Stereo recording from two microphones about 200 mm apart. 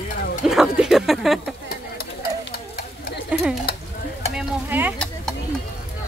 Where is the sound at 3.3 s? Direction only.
5° right (ahead or behind).